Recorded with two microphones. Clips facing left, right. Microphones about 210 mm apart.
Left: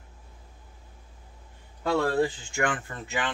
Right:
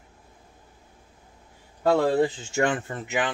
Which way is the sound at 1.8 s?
20° right (ahead or behind).